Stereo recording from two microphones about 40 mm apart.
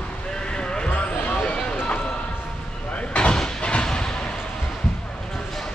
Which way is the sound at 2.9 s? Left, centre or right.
Left.